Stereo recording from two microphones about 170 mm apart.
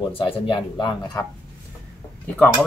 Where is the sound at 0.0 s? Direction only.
30° left (ahead or behind).